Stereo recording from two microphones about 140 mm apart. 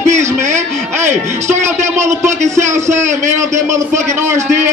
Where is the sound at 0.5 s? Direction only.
60° right (ahead or behind).